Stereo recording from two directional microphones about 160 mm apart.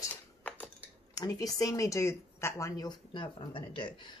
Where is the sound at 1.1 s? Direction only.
20° left (ahead or behind).